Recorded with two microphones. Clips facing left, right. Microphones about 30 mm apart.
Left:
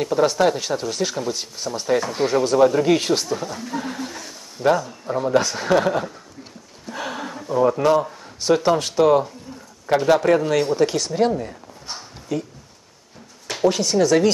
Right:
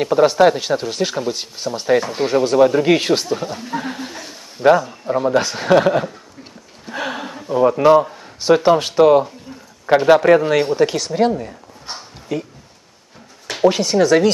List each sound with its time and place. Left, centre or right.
0.0 s speech: right
13.5 s speech: centre